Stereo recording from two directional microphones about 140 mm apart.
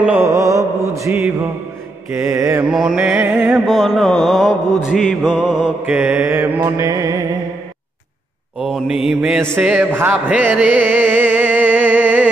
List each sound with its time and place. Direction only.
0.0 s mantra: 10° right (ahead or behind)
0.3 s mantra: 20° right (ahead or behind)
2.7 s mantra: 5° right (ahead or behind)
6.6 s music: 25° right (ahead or behind)
8.5 s mantra: centre (ahead or behind)
9.6 s music: 10° right (ahead or behind)